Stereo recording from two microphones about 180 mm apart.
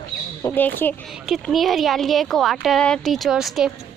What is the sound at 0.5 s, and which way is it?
Speech, 10° left (ahead or behind).